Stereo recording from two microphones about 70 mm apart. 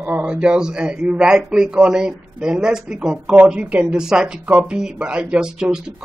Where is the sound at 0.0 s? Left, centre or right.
Right.